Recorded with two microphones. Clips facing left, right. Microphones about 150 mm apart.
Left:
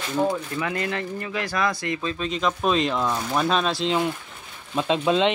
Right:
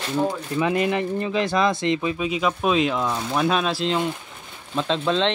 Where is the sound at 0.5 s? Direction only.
20° right (ahead or behind).